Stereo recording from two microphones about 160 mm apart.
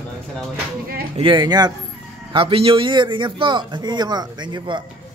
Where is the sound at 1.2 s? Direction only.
30° right (ahead or behind).